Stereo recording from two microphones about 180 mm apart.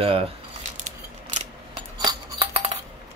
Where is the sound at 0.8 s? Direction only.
45° right (ahead or behind).